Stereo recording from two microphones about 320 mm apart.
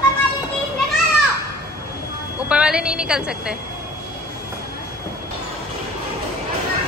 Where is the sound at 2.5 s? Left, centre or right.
Centre.